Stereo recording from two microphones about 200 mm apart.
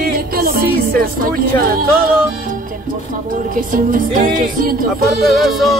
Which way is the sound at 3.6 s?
45° right (ahead or behind).